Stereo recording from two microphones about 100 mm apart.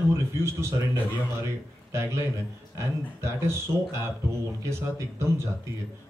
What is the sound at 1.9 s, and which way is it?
A man's voice, 25° right (ahead or behind).